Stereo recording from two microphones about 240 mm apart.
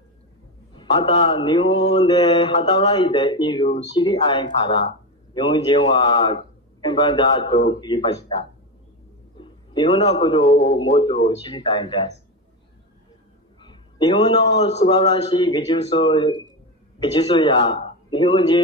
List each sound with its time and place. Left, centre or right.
0.7 s a man's voice: left
13.6 s a man's voice: centre